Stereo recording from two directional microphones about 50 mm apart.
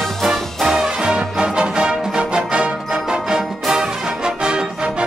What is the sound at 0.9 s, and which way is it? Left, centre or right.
Music, centre.